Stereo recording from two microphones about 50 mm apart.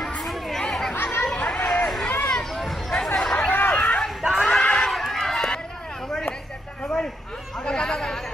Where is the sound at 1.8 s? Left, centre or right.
Centre.